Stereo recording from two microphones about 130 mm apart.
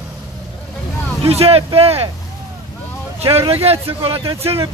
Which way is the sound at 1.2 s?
50° right (ahead or behind).